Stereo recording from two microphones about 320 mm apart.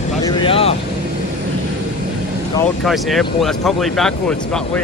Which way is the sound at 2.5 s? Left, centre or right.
Centre.